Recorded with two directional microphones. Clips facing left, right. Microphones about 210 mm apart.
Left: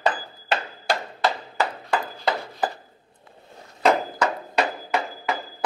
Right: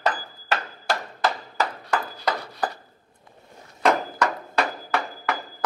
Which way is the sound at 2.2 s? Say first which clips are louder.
Left 2 dB; 25° left (ahead or behind).